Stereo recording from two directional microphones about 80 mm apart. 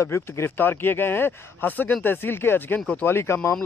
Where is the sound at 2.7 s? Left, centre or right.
Centre.